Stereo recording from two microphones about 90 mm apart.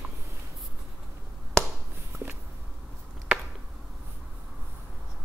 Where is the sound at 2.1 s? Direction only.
30° right (ahead or behind).